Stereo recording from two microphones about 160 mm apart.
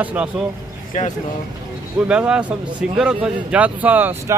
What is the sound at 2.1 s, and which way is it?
Speech, 5° right (ahead or behind).